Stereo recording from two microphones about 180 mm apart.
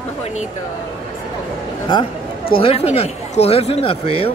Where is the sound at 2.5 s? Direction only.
35° left (ahead or behind).